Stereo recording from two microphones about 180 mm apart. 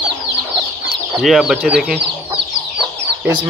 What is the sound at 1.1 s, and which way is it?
Speech, centre (ahead or behind).